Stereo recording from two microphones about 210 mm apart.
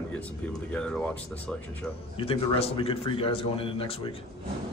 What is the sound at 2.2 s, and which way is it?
Speech, 25° left (ahead or behind).